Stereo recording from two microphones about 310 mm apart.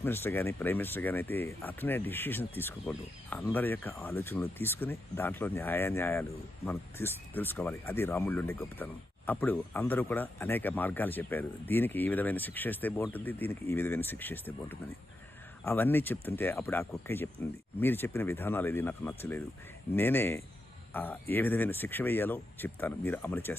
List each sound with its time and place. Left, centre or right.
0.0 s speech: centre